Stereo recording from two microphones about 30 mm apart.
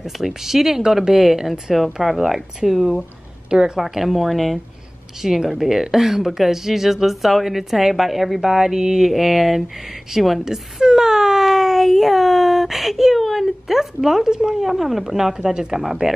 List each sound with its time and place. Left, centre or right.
0.0 s a woman's voice: centre
3.4 s a woman's voice: right
4.0 s speech: centre
5.2 s a woman's voice: centre
9.1 s speech: centre
10.4 s speech: centre
11.4 s speech: centre
13.7 s a woman's voice: centre
14.3 s speech: right
14.6 s speech: centre
15.1 s speech: centre